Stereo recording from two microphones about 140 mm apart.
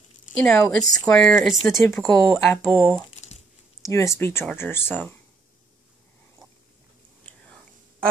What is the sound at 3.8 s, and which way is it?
Speech, 20° left (ahead or behind).